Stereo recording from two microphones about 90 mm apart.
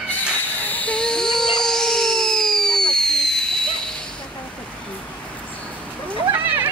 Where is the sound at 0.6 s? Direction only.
20° left (ahead or behind).